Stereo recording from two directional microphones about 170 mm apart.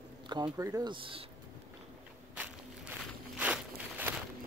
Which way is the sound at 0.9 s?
30° right (ahead or behind).